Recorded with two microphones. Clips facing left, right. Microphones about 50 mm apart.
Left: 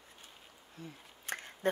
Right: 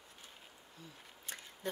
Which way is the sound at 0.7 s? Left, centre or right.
Left.